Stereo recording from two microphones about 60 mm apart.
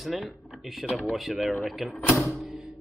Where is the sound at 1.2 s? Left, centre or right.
Centre.